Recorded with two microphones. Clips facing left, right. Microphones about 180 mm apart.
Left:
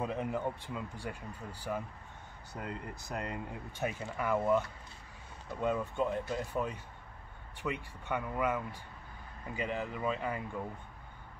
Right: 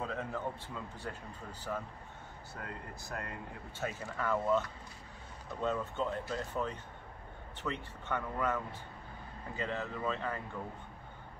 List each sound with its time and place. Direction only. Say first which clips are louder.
0.0 s a man's voice: left 3 dB; 15° left (ahead or behind)
2.5 s speech: left 4 dB; 20° left (ahead or behind)